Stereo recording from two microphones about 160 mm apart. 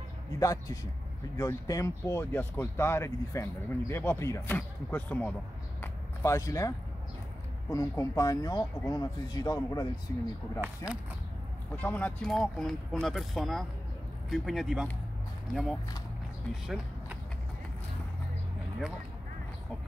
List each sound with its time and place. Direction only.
0.4 s speech: 20° left (ahead or behind)
5.8 s a sound: 20° left (ahead or behind)
7.7 s speech: 20° left (ahead or behind)
11.7 s speech: 10° left (ahead or behind)